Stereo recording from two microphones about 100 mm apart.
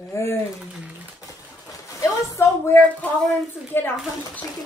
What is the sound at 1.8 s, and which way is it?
A child's voice, 30° left (ahead or behind).